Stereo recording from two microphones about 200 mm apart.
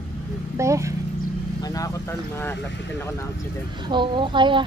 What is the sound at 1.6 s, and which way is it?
Vehicle, 15° left (ahead or behind).